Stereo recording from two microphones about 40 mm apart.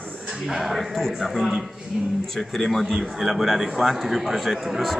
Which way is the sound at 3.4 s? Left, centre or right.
Centre.